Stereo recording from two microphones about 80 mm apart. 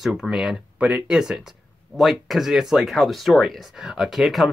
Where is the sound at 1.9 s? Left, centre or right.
Centre.